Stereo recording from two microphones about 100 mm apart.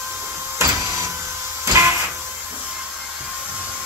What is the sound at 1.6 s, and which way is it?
Printer, 30° right (ahead or behind).